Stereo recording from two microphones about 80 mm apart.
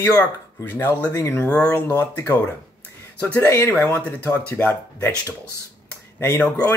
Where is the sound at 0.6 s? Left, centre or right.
Left.